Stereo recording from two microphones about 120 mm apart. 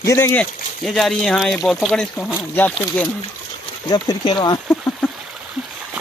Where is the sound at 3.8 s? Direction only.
35° left (ahead or behind).